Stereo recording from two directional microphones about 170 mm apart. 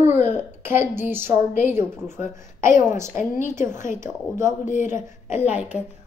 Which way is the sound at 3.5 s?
15° right (ahead or behind).